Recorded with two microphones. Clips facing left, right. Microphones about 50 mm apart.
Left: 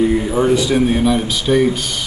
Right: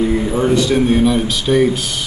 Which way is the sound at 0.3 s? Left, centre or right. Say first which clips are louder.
Even; centre.